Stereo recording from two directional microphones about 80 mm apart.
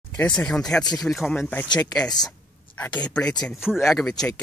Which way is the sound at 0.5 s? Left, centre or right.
Centre.